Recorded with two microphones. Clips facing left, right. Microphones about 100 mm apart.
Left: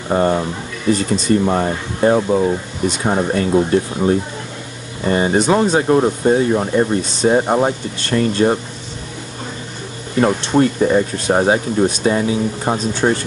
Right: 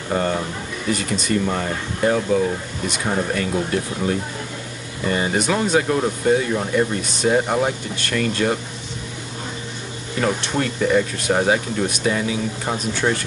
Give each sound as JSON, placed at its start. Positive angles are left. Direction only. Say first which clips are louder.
{"t": 0.1, "sound": "speech", "louder": "left 6 dB", "side_deg": 30}
{"t": 10.2, "sound": "speech", "louder": "left 7 dB", "side_deg": 30}